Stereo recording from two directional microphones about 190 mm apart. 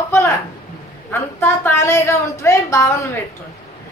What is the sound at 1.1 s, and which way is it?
A woman's voice, 15° left (ahead or behind).